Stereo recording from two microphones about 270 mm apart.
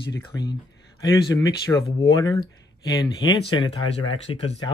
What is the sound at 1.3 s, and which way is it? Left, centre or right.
Speech, centre.